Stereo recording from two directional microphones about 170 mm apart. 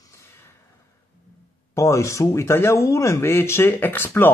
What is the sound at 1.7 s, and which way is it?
Speech, 15° left (ahead or behind).